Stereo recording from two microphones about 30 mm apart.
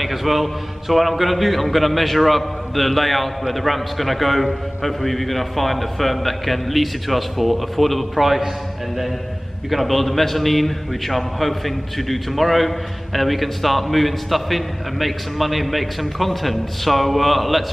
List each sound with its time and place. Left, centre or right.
0.0 s a man's voice: centre
9.7 s a man's voice: centre